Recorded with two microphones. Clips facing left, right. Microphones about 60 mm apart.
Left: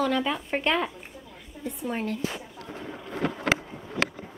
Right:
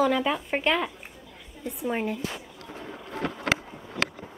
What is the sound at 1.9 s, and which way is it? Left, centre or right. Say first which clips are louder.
Speech: right 2 dB; centre.